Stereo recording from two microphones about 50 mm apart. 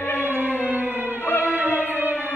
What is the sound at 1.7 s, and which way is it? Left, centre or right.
Music, left.